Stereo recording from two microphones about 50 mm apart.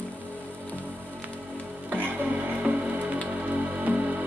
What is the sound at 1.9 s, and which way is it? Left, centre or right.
Music, right.